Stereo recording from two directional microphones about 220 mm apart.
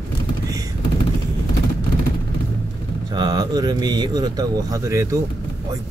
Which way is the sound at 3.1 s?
20° right (ahead or behind).